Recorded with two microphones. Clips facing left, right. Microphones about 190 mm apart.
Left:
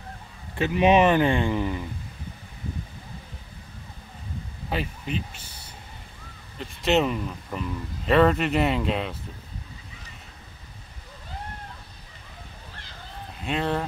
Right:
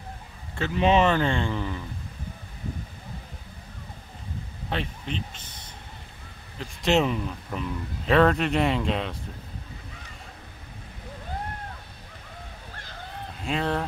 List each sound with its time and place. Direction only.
0.6 s speech: 15° left (ahead or behind)
4.6 s speech: 5° left (ahead or behind)
13.4 s speech: centre (ahead or behind)